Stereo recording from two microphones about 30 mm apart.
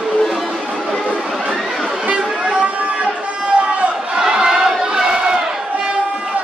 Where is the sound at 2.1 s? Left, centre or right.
Right.